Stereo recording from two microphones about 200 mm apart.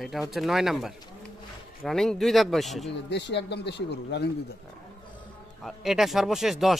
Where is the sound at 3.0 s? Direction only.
60° left (ahead or behind).